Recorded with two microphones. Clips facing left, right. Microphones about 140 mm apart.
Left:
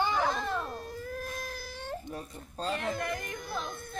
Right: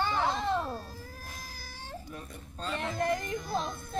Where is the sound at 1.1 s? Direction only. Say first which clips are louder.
Left 9 dB; 60° left (ahead or behind).